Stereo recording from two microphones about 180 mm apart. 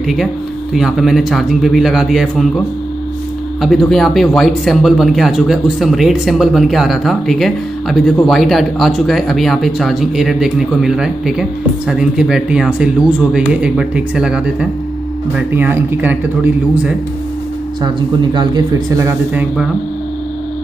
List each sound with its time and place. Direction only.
0.0 s speech: centre (ahead or behind)
3.6 s speech: centre (ahead or behind)
18.3 s speech: 25° right (ahead or behind)